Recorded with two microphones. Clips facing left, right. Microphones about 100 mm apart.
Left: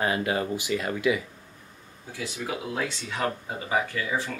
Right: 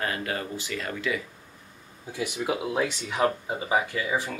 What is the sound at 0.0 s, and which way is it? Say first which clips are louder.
Speech: left 4 dB; 15° left (ahead or behind).